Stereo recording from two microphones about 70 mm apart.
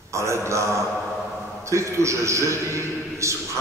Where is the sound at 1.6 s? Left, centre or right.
Right.